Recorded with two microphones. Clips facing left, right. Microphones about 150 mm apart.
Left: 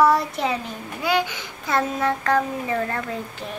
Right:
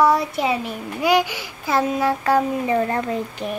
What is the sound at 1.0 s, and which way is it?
A child's voice, 10° right (ahead or behind).